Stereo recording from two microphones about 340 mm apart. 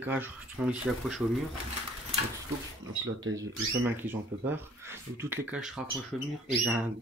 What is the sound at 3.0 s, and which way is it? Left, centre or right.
Speech, right.